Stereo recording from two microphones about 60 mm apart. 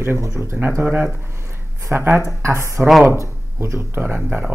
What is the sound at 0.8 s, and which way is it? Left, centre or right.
Speech, right.